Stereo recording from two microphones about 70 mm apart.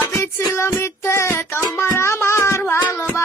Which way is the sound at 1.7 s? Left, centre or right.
Left.